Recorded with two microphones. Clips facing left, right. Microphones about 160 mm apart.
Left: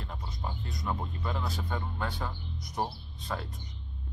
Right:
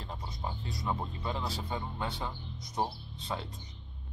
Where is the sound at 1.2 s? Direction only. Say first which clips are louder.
Left 1 dB; 25° right (ahead or behind).